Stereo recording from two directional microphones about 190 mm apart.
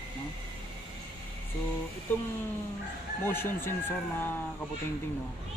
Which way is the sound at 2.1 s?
10° left (ahead or behind).